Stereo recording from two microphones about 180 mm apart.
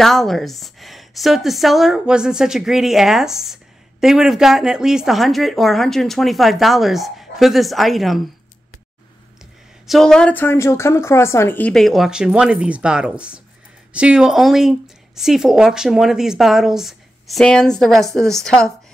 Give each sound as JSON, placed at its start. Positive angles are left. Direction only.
{"t": 0.0, "sound": "speech", "side_deg": 0}
{"t": 9.8, "sound": "speech", "side_deg": 0}